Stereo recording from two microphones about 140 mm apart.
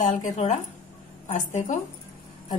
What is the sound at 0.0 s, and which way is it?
A woman's voice, 55° left (ahead or behind).